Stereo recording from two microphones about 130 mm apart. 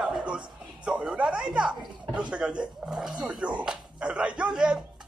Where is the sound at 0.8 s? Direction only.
5° right (ahead or behind).